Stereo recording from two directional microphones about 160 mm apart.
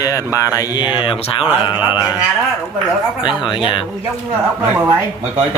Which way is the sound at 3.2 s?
30° left (ahead or behind).